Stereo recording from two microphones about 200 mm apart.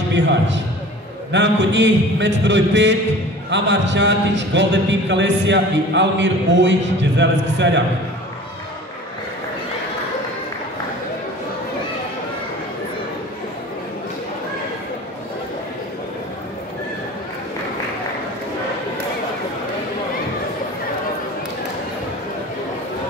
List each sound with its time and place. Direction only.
0.1 s a man's voice: 60° right (ahead or behind)